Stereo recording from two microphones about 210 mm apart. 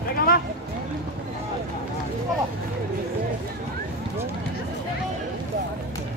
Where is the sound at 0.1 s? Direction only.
45° left (ahead or behind).